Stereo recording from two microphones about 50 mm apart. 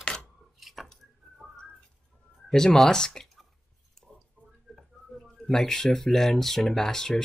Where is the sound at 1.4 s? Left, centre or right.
Centre.